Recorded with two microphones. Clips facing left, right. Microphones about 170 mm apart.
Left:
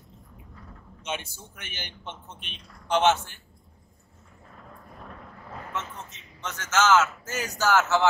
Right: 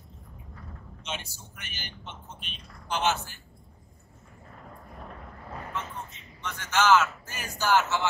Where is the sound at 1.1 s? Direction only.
55° left (ahead or behind).